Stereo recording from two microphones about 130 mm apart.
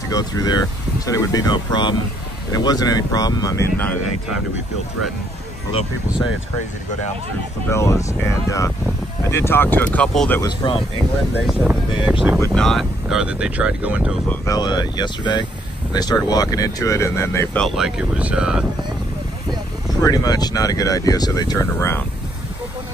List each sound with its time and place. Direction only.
0.1 s speech: 30° left (ahead or behind)
7.7 s speech: 25° left (ahead or behind)
10.4 s speech: 40° left (ahead or behind)
12.1 s speech: 5° right (ahead or behind)
14.4 s speech: 30° left (ahead or behind)
17.6 s speech: centre (ahead or behind)
20.0 s speech: 30° left (ahead or behind)
21.7 s speech: 20° left (ahead or behind)